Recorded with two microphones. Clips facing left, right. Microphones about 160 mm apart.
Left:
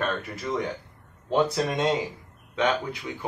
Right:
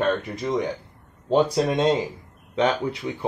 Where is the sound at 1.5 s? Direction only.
30° right (ahead or behind).